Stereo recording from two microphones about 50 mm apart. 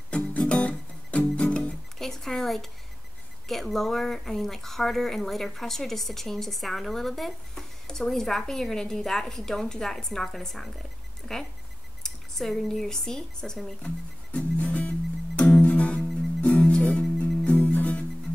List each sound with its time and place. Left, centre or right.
0.1 s music: left
2.0 s a sound: centre
3.4 s speech: centre
13.8 s music: left